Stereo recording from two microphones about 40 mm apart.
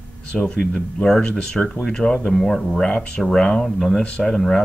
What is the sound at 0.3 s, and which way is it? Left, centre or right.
Speech, left.